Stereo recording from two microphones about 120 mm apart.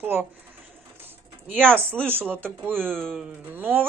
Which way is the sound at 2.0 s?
15° right (ahead or behind).